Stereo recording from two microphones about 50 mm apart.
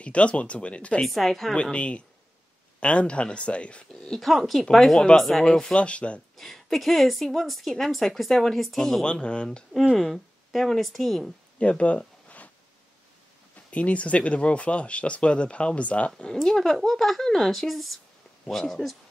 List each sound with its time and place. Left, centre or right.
0.0 s speech: left
1.0 s speech: centre
1.5 s speech: left
4.1 s speech: centre
5.5 s speech: centre
6.3 s speech: centre
9.0 s speech: centre
10.1 s speech: centre
11.6 s speech: left
13.7 s speech: left
16.3 s speech: centre